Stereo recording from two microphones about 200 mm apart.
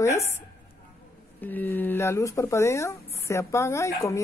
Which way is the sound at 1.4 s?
10° left (ahead or behind).